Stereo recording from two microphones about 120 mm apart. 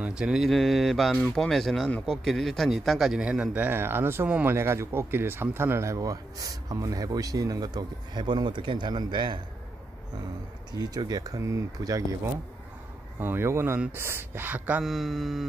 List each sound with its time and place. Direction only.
0.0 s a man's voice: 5° right (ahead or behind); by 9.4 s 40° right (ahead or behind)
10.7 s speech: 35° right (ahead or behind)
13.2 s a man's voice: 20° right (ahead or behind)
14.9 s speech: centre (ahead or behind)